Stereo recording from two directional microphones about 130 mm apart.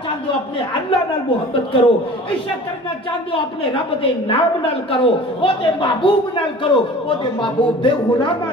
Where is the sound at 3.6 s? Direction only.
45° left (ahead or behind).